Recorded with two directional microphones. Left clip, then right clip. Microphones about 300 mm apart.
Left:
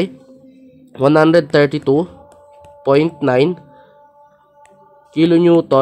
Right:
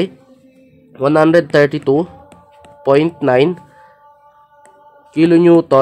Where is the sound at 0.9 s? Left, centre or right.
Left.